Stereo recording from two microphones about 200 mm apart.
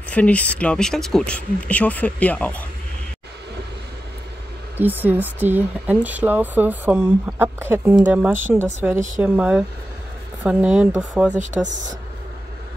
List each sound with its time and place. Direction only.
0.1 s speech: 5° left (ahead or behind)
4.7 s speech: 10° right (ahead or behind)
11.3 s speech: 35° right (ahead or behind)